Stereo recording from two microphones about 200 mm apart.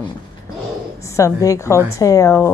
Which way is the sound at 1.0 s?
15° left (ahead or behind).